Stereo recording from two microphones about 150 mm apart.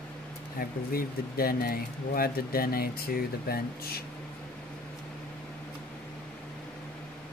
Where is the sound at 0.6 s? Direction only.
80° left.